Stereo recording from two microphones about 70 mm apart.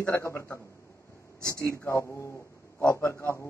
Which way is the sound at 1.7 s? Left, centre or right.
Left.